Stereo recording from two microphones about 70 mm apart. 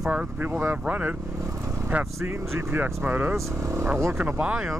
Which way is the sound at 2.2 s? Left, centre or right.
Right.